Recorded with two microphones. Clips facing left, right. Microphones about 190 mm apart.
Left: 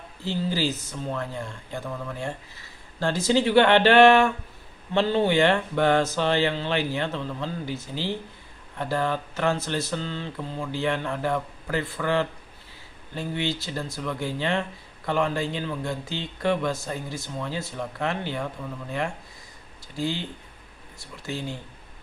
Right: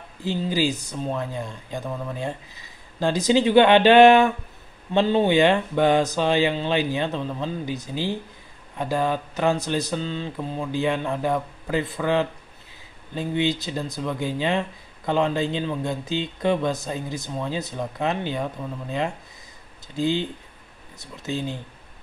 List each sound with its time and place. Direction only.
0.2 s speech: 15° right (ahead or behind)